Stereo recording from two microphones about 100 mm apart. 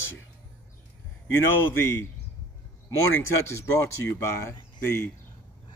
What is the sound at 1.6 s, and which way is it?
Speech, 25° left (ahead or behind).